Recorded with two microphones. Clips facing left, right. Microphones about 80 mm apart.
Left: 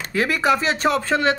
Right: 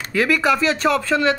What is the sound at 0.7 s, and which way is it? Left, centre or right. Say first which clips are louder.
Speech: right 1 dB; left.